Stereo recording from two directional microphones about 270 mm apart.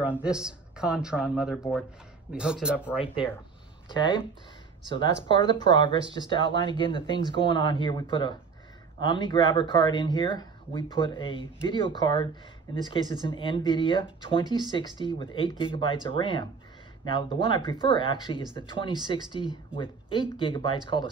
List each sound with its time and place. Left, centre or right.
0.2 s speech: centre
3.9 s speech: centre